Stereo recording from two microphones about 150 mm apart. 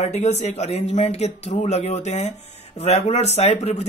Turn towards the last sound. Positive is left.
turn(degrees=45)  # may be behind; listen again after turning